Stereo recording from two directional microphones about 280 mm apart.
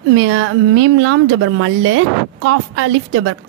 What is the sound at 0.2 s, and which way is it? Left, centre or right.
A woman's voice, right.